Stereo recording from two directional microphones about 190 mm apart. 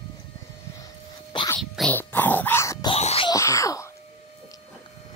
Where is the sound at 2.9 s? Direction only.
30° left (ahead or behind).